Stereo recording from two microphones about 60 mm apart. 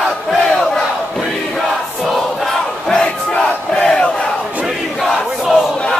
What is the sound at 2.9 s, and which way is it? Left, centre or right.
Crowd, centre.